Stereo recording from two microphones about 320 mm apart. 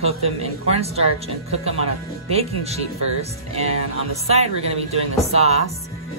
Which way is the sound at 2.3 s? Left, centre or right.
Centre.